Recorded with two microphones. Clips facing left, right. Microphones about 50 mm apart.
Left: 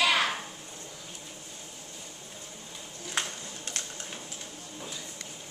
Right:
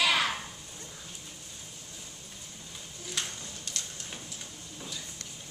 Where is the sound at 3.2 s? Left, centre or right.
Left.